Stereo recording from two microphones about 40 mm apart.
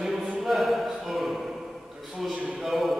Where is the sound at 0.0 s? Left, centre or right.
Centre.